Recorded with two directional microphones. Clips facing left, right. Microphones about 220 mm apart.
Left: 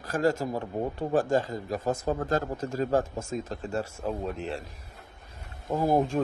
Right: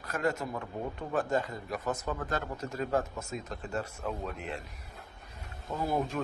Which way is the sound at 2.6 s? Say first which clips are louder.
Left 5 dB; 30° left (ahead or behind).